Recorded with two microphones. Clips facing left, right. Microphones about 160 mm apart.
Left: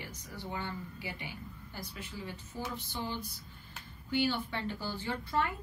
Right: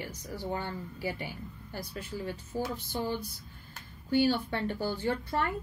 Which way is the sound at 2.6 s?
50° right (ahead or behind).